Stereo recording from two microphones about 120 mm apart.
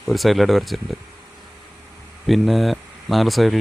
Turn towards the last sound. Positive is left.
turn(degrees=0)  # may be behind; listen again after turning